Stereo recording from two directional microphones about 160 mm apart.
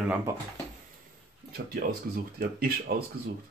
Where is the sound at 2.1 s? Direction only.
70° right (ahead or behind).